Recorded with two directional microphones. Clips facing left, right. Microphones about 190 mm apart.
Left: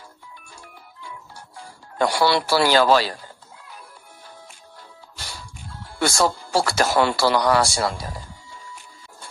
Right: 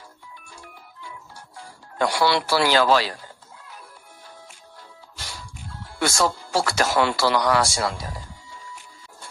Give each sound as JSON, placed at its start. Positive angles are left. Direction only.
{"t": 2.0, "sound": "speech", "side_deg": 35}
{"t": 5.9, "sound": "speech", "side_deg": 35}